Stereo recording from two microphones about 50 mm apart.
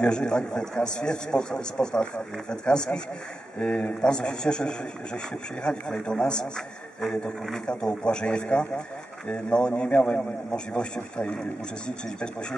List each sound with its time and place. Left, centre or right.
0.0 s a man's voice: centre
7.8 s a man's voice: centre